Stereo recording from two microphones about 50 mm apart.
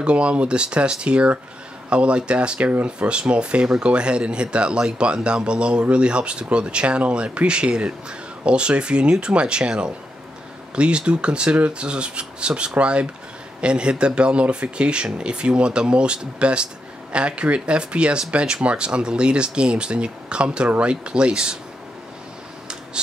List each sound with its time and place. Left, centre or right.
0.0 s speech: right